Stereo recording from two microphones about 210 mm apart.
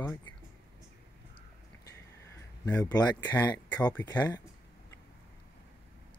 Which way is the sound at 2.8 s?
20° left (ahead or behind).